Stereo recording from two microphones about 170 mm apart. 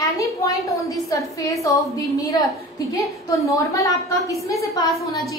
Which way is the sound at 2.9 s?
20° left (ahead or behind).